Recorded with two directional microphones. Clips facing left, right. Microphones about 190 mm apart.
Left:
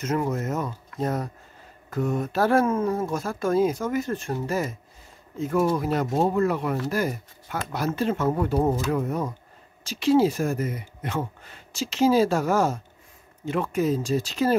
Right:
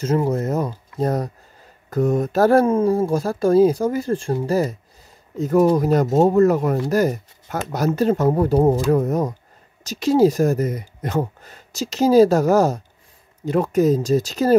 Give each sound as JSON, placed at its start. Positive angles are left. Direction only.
{"t": 0.0, "sound": "speech", "side_deg": -30}